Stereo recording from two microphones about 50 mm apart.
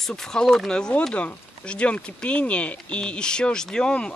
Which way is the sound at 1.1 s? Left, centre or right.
Left.